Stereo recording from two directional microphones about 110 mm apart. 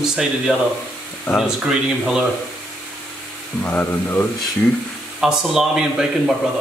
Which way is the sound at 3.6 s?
15° left (ahead or behind).